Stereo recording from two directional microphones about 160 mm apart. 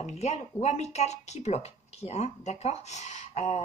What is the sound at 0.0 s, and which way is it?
Speech, 45° left (ahead or behind).